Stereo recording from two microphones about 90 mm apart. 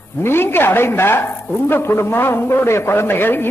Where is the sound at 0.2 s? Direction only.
25° left (ahead or behind).